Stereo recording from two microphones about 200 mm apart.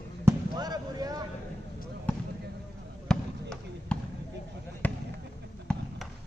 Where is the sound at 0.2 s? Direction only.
20° right (ahead or behind).